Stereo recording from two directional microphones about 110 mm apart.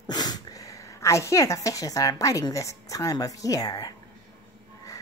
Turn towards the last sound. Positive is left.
turn(degrees=35)  # may be behind; listen again after turning